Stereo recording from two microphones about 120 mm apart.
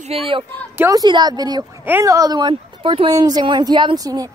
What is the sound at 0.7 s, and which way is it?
Speech, 20° right (ahead or behind).